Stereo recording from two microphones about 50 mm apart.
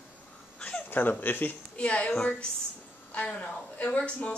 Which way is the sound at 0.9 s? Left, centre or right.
Left.